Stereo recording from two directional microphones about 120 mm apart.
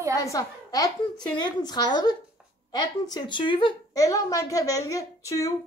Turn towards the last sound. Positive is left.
turn(degrees=30)  # may be behind; listen again after turning